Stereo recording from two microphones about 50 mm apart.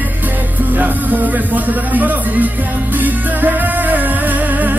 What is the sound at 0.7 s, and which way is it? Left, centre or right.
Speech, right.